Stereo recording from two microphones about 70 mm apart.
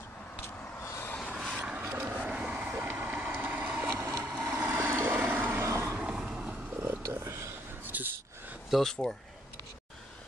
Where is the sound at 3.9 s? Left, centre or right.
Right.